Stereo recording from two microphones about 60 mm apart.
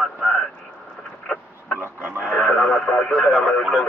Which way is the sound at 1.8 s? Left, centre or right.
Right.